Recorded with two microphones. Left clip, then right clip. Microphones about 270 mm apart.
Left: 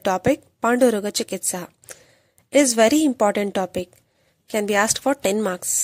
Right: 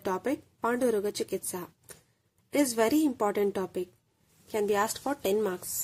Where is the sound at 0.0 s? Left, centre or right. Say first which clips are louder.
Left 11 dB; left.